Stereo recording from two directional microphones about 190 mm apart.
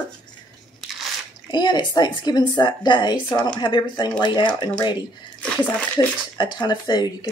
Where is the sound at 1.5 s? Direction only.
25° left (ahead or behind).